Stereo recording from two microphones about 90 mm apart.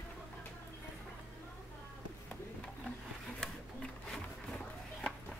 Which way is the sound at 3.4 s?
5° left (ahead or behind).